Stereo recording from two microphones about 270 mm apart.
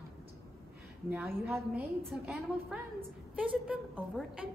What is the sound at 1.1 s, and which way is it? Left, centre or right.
A woman's voice, centre.